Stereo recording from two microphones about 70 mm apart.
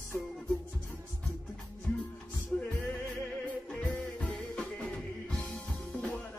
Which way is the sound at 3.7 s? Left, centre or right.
Centre.